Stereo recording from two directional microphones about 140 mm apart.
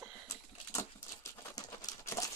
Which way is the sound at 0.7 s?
20° left (ahead or behind).